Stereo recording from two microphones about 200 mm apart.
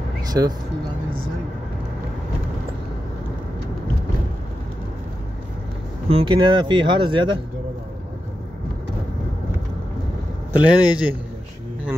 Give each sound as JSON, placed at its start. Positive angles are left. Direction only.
{"t": 0.3, "sound": "speech", "side_deg": -20}
{"t": 6.0, "sound": "speech", "side_deg": -25}
{"t": 10.6, "sound": "a man's voice", "side_deg": -5}